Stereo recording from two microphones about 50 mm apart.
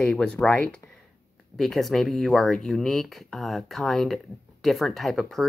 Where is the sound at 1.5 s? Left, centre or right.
Centre.